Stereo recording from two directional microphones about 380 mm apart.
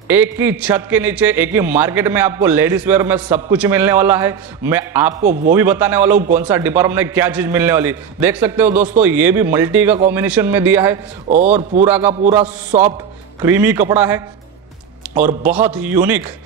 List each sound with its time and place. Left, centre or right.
0.1 s a man's voice: centre
5.2 s a man's voice: right
5.5 s a man's voice: centre
11.2 s a man's voice: centre
11.8 s a man's voice: centre
12.1 s a man's voice: centre
13.4 s a man's voice: centre
15.0 s a sound: centre
15.4 s a man's voice: centre